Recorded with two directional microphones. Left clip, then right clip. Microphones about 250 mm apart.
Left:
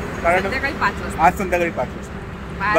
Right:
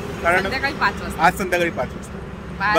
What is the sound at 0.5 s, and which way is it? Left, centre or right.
Speech, centre.